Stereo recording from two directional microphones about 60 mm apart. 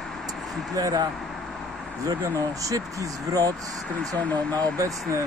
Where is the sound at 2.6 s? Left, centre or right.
Right.